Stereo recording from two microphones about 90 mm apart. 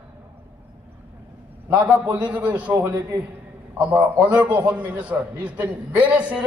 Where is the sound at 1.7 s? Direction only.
15° right (ahead or behind).